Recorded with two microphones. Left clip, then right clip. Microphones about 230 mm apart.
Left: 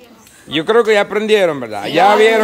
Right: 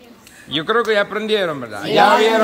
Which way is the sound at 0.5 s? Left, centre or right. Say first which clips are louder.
Left 5 dB; centre.